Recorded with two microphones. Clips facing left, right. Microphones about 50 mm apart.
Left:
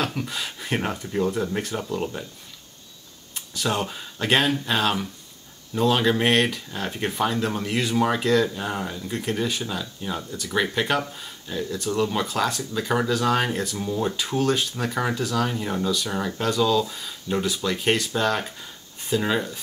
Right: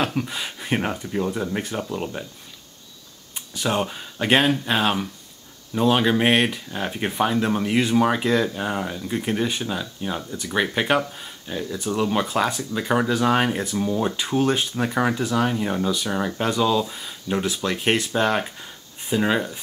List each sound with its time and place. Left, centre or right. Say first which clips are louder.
0.0 s speech: right 3 dB; centre
3.3 s speech: right 2 dB; centre
18.4 s a sound: right 2 dB; centre